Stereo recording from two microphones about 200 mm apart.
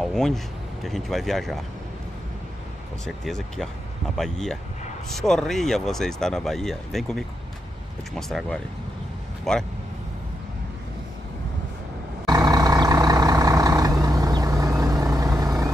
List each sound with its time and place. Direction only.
0.0 s speech: centre (ahead or behind)
3.1 s speech: centre (ahead or behind)
12.3 s vehicle: 20° right (ahead or behind)